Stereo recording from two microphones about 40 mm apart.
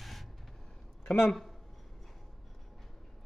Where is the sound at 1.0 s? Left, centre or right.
Left.